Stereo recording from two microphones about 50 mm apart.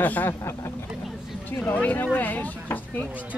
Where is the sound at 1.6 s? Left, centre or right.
Left.